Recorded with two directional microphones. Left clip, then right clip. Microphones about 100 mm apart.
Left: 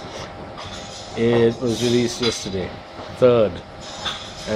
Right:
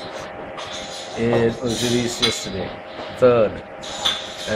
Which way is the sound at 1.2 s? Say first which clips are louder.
Left 2 dB; 45° left (ahead or behind).